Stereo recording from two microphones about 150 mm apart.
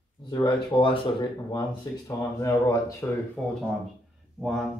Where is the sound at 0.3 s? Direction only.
30° left (ahead or behind).